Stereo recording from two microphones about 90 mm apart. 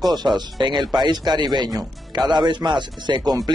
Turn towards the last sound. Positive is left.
turn(degrees=-50)  # may be behind; listen again after turning